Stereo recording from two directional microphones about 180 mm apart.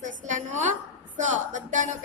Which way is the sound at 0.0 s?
45° right (ahead or behind).